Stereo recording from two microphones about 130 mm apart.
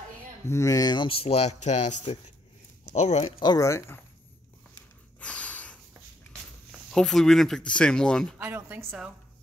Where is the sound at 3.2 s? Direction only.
35° left (ahead or behind).